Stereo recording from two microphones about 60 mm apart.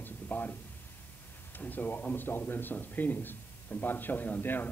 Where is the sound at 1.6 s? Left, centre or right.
Left.